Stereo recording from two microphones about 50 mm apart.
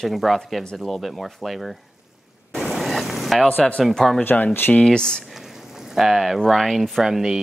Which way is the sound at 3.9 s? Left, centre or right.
Centre.